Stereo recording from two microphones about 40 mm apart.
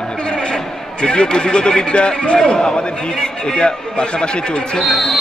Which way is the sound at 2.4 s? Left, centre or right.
Centre.